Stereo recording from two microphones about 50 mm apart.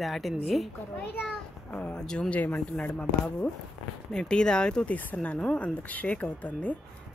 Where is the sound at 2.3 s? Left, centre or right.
Left.